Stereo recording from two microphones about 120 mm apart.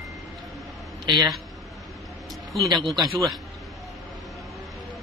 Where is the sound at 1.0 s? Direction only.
40° right (ahead or behind).